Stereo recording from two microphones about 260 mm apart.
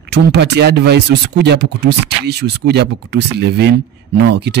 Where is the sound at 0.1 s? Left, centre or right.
Right.